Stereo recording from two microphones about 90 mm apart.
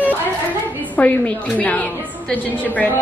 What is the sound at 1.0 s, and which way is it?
A woman's voice, 15° left (ahead or behind).